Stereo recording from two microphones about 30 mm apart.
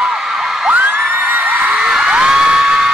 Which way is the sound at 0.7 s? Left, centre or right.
Right.